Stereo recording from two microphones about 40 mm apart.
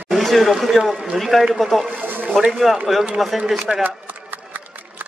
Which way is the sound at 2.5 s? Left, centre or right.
Centre.